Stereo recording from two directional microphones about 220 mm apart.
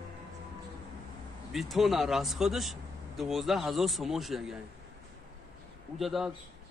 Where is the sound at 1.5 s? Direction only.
Centre (ahead or behind).